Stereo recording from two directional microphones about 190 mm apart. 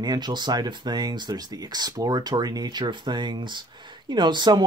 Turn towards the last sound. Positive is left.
turn(degrees=-25)  # may be behind; listen again after turning